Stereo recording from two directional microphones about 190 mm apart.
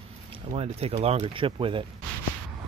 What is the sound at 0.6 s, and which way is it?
Speech, 30° right (ahead or behind).